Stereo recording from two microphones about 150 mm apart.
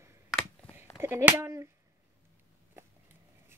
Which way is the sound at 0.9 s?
15° right (ahead or behind).